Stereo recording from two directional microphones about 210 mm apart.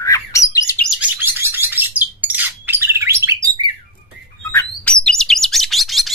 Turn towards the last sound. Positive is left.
turn(degrees=0)  # may be behind; listen again after turning